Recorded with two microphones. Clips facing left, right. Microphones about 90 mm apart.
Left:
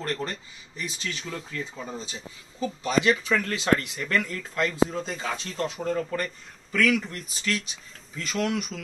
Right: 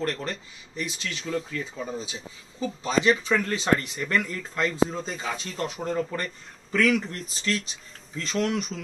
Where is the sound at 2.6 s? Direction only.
25° right (ahead or behind).